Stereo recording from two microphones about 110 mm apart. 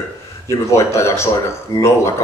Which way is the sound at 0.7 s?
25° left (ahead or behind).